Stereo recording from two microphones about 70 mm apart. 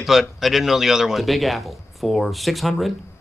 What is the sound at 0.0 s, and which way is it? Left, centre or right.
A man's voice, centre.